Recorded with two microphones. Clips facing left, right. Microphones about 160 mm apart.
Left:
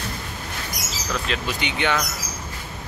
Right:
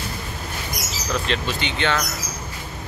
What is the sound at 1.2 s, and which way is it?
Speech, 10° left (ahead or behind).